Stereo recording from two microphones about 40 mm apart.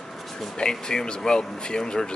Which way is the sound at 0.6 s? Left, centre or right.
Centre.